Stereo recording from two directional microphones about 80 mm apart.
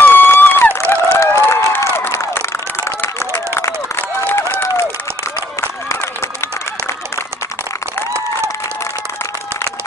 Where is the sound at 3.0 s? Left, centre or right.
Left.